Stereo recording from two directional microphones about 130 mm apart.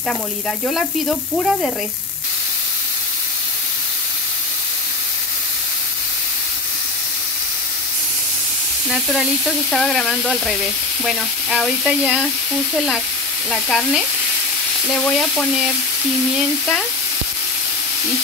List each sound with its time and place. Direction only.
0.7 s frying: centre (ahead or behind)
9.7 s frying: centre (ahead or behind)